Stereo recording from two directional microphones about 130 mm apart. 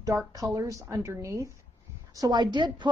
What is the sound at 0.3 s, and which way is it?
A woman's voice, 25° right (ahead or behind).